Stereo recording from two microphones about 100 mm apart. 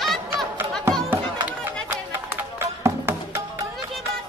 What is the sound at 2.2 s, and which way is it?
Music, 25° right (ahead or behind).